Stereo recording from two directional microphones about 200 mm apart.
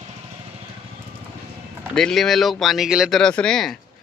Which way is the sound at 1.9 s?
Centre (ahead or behind).